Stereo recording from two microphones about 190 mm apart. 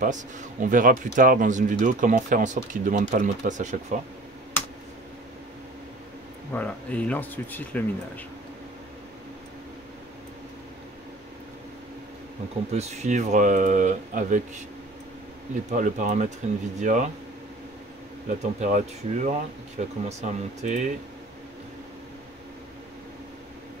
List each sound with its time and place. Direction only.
0.0 s speech: 45° right (ahead or behind)
6.5 s speech: 5° left (ahead or behind)
12.7 s speech: 35° right (ahead or behind)
15.7 s speech: 45° right (ahead or behind)
18.3 s speech: 40° right (ahead or behind)